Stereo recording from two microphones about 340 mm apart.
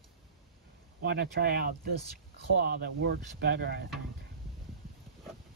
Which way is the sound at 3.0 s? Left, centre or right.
Right.